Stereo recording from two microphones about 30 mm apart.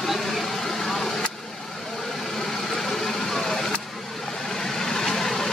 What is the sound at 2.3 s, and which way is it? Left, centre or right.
Vehicle, centre.